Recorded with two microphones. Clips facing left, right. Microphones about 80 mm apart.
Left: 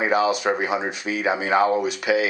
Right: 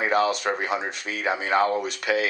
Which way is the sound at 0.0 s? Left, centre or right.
Centre.